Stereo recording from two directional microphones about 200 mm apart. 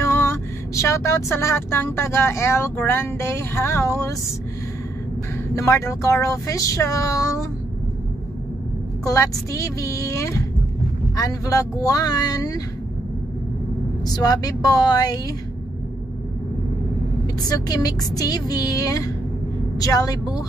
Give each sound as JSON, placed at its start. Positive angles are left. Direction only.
{"t": 0.0, "sound": "speech", "side_deg": 15}
{"t": 5.5, "sound": "speech", "side_deg": 15}
{"t": 9.0, "sound": "speech", "side_deg": 15}
{"t": 14.0, "sound": "speech", "side_deg": 20}
{"t": 17.4, "sound": "speech", "side_deg": 20}